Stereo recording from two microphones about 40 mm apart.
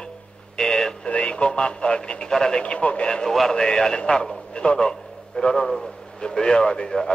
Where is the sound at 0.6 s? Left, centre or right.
Centre.